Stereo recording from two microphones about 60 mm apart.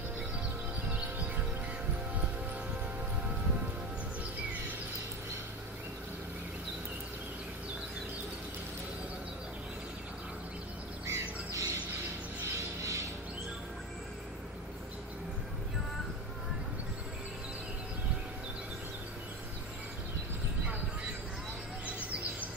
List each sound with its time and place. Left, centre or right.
11.1 s music: right